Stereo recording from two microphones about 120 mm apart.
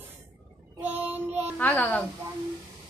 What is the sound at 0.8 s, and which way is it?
Child singing, 15° right (ahead or behind).